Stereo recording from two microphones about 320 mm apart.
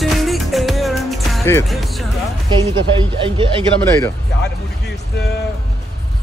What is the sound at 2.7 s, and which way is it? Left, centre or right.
Speech, centre.